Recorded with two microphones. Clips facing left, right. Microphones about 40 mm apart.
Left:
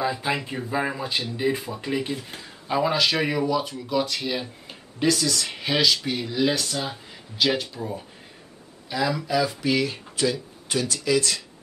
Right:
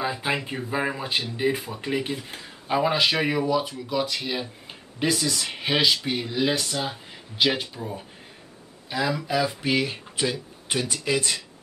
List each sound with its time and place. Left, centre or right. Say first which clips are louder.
0.0 s speech: left 1 dB; centre
8.9 s speech: left 1 dB; centre
9.3 s speech: left 1 dB; centre